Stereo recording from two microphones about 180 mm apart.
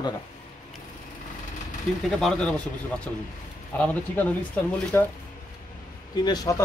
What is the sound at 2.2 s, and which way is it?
Speech, 5° left (ahead or behind).